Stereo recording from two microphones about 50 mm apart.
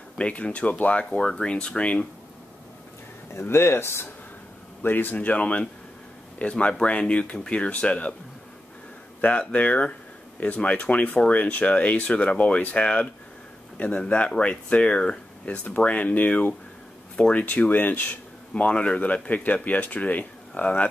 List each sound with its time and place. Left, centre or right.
0.2 s speech: left
3.3 s speech: left
4.8 s speech: left
9.5 s speech: left